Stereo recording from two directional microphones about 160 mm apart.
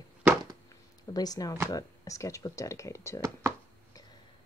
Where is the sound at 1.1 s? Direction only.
25° left (ahead or behind).